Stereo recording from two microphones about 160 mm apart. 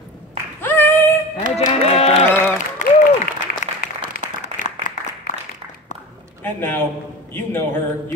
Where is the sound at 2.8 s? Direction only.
50° left (ahead or behind).